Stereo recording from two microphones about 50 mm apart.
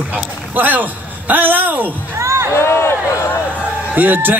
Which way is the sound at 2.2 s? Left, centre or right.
Right.